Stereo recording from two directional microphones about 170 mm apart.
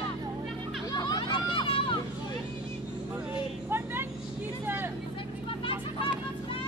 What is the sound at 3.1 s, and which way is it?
Vehicle, 10° right (ahead or behind).